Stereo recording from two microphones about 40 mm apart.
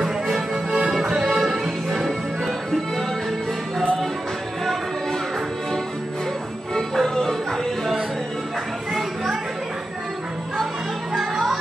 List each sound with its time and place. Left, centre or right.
0.0 s music: centre
1.1 s music: right
1.4 s music: centre
6.7 s music: centre
8.9 s a sound: centre
11.1 s a sound: centre